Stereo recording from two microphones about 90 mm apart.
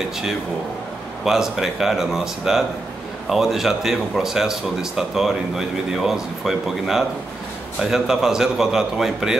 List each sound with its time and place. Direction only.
1.2 s speech: 5° right (ahead or behind)